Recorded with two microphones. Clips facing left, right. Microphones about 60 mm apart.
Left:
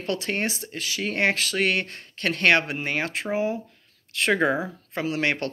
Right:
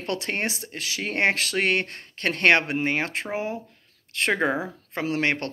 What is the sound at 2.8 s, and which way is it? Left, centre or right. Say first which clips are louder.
Speech: right 1 dB; right.